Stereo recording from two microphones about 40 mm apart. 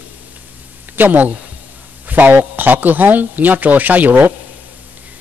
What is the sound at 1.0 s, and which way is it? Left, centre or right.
A man's voice, right.